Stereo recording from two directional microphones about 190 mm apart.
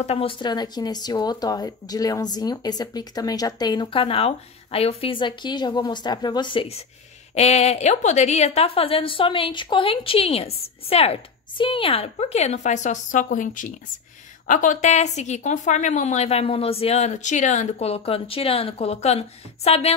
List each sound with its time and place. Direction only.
0.0 s a woman's voice: 30° left (ahead or behind)